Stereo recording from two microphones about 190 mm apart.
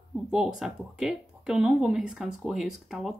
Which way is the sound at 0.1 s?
5° right (ahead or behind).